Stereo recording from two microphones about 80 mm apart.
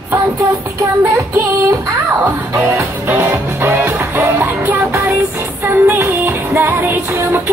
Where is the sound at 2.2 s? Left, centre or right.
Right.